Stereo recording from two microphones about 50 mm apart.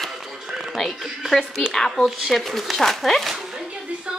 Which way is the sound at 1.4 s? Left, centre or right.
Centre.